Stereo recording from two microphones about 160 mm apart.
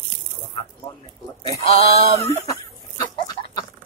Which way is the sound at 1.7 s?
40° left (ahead or behind).